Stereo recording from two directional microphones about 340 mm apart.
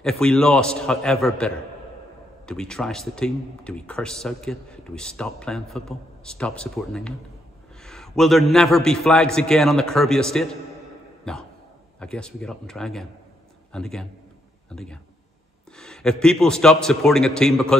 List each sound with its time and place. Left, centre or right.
0.0 s a man's voice: centre